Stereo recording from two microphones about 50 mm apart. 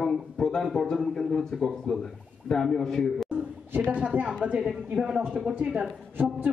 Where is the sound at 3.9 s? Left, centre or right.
Right.